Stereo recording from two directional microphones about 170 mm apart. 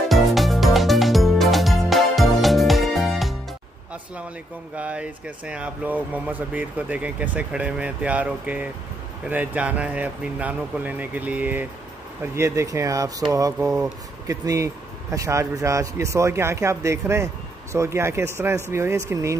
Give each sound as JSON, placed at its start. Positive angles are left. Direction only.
{"t": 0.1, "sound": "music", "side_deg": 0}
{"t": 4.7, "sound": "speech", "side_deg": -10}